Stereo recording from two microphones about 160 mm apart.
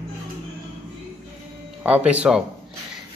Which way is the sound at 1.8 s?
10° right (ahead or behind).